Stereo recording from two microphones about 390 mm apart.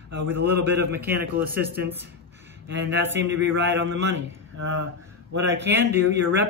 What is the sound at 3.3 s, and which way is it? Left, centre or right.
A man's voice, right.